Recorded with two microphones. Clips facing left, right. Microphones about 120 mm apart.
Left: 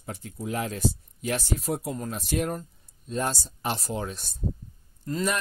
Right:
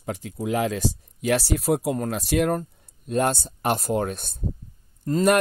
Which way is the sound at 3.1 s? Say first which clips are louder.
Right 6 dB; 60° right (ahead or behind).